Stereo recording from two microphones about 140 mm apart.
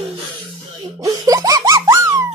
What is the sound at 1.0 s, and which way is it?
Music, 25° right (ahead or behind).